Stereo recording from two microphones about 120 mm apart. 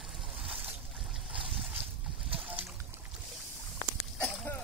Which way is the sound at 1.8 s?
50° right (ahead or behind).